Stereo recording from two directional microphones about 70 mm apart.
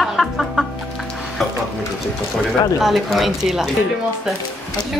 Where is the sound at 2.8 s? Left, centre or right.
Centre.